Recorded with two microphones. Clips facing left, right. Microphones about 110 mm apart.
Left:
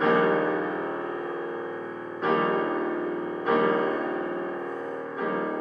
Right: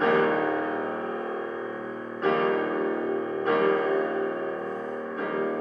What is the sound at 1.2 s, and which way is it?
Gong, 35° right (ahead or behind).